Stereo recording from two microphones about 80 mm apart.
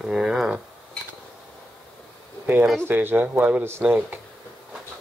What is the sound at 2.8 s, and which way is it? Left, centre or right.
Speech, right.